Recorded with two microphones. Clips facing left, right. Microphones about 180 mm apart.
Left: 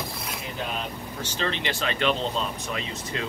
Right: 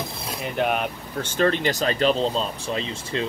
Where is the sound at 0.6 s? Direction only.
65° right (ahead or behind).